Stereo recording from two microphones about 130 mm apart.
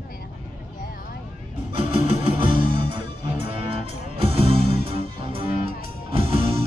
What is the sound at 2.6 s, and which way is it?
Music, 40° right (ahead or behind).